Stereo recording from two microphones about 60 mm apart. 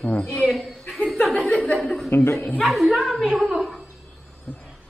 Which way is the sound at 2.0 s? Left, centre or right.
Left.